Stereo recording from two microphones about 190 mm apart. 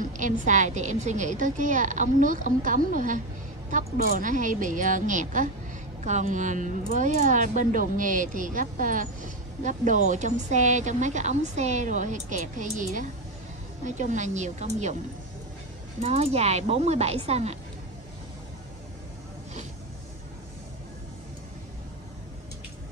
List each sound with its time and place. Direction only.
0.0 s speech: 40° right (ahead or behind)
16.0 s speech: 35° right (ahead or behind)